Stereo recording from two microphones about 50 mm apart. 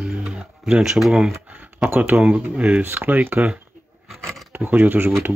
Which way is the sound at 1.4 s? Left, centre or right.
Right.